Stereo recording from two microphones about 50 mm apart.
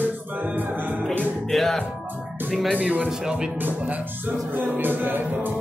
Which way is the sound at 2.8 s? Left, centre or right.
Right.